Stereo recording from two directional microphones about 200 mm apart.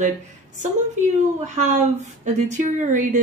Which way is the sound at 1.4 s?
35° right (ahead or behind).